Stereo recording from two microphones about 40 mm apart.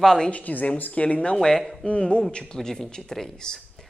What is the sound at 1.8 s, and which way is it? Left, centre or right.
A man's voice, left.